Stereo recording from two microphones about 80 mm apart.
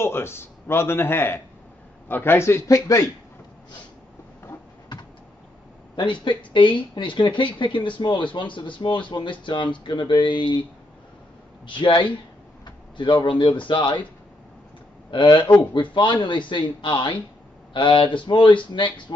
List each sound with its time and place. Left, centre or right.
0.0 s speech: left
5.9 s speech: left
11.6 s speech: left
15.0 s a man's voice: left
15.7 s speech: left
17.7 s speech: left